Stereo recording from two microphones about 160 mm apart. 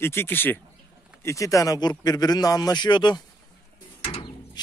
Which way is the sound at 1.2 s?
20° left (ahead or behind).